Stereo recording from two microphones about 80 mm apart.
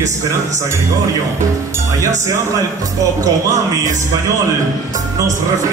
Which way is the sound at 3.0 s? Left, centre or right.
Right.